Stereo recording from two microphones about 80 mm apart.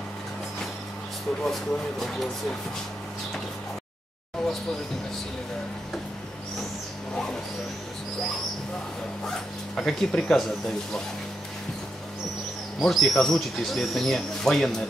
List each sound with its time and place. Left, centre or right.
1.4 s speech: centre
9.8 s speech: centre
12.8 s speech: centre